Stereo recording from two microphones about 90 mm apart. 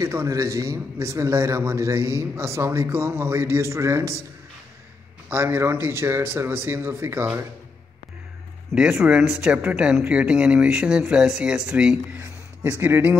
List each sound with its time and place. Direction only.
0.0 s a man's voice: 30° right (ahead or behind)
5.3 s speech: 25° right (ahead or behind)
8.9 s speech: 20° right (ahead or behind)
12.1 s a man's voice: 25° right (ahead or behind)